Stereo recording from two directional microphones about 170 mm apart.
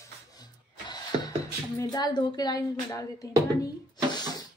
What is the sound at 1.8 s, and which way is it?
A woman's voice, 25° left (ahead or behind).